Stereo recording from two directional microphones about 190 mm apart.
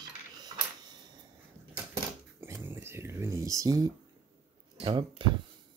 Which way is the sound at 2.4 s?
15° right (ahead or behind).